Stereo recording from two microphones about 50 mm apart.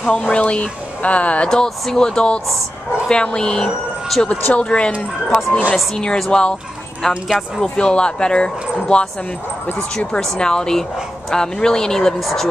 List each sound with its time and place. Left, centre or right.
0.0 s speech: left
1.5 s speech: centre
4.3 s speech: left
5.9 s speech: centre
7.7 s speech: centre
10.1 s speech: centre